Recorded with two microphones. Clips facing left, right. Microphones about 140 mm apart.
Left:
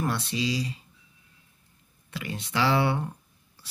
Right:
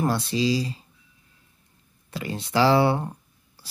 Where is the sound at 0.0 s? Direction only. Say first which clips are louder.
Right 5 dB; 30° right (ahead or behind).